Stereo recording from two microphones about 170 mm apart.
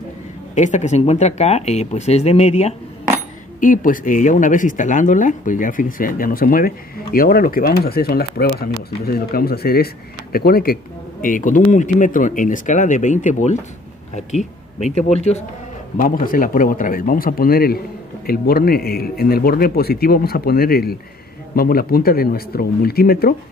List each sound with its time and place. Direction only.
0.6 s speech: 45° left (ahead or behind)
3.6 s speech: 50° left (ahead or behind)
16.0 s speech: 55° left (ahead or behind)